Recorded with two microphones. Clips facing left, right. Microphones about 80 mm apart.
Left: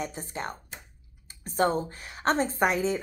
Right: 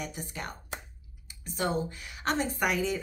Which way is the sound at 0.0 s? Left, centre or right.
Left.